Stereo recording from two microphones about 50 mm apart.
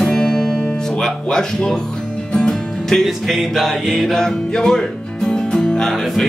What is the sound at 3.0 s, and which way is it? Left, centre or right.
Music, centre.